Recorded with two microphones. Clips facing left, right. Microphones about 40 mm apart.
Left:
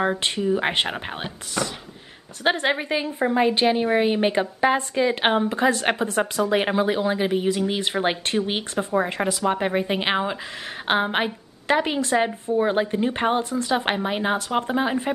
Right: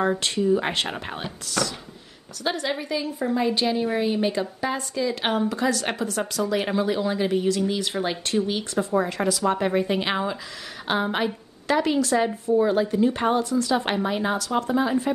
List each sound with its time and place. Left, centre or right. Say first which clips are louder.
0.2 s speech: even; left
2.4 s a woman's voice: left 5 dB; left
8.7 s a woman's voice: even; left